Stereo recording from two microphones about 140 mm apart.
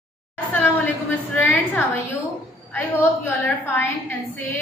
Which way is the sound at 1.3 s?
15° left (ahead or behind).